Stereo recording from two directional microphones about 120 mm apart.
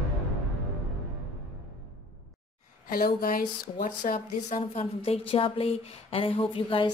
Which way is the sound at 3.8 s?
90° left.